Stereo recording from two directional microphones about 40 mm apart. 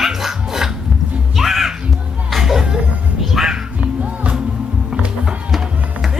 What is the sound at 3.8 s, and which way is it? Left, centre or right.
Music, right.